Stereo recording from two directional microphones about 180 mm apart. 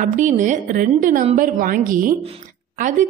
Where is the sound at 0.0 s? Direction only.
45° right (ahead or behind).